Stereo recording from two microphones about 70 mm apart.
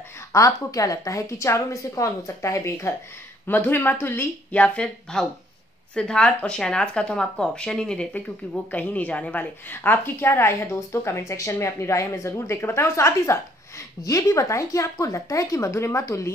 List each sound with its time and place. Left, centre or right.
0.3 s speech: left
3.4 s a woman's voice: left
4.5 s a woman's voice: centre; by 13.4 s left
14.0 s speech: left